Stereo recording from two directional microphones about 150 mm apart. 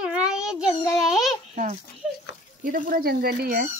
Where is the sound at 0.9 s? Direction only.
Centre (ahead or behind).